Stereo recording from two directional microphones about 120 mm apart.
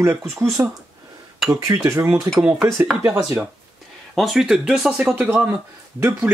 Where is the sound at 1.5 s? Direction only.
25° right (ahead or behind).